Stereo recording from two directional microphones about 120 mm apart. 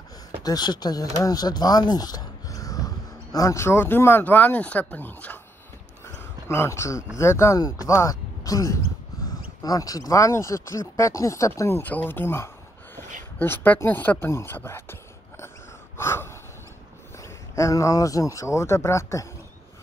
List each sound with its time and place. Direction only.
0.4 s speech: 35° left (ahead or behind); by 5.4 s 15° left (ahead or behind)
6.0 s a sound: 20° left (ahead or behind)
7.2 s speech: 25° left (ahead or behind)
16.0 s gasp: 20° left (ahead or behind)
17.2 s speech: 25° left (ahead or behind)